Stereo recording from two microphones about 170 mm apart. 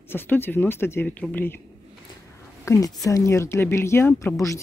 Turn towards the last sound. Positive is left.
turn(degrees=20)  # may be behind; listen again after turning